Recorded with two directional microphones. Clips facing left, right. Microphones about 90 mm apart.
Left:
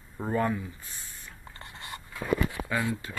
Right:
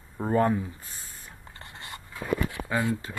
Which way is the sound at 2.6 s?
30° right (ahead or behind).